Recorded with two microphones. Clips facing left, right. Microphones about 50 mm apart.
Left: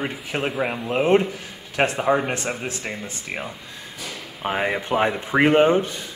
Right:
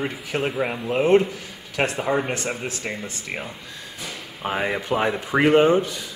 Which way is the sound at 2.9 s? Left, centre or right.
Centre.